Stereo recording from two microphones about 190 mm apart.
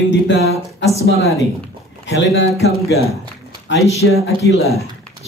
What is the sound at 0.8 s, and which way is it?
Speech, 35° right (ahead or behind).